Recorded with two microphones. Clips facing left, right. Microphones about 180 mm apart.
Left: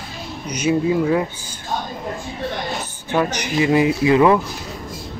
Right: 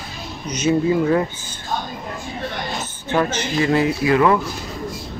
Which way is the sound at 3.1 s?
10° left (ahead or behind).